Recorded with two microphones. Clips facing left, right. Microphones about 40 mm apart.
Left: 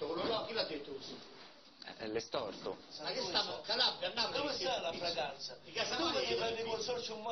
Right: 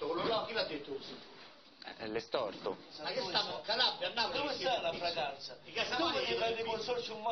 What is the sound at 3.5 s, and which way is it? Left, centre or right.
A man's voice, centre.